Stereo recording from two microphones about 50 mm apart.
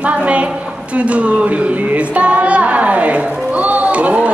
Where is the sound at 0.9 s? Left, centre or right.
Right.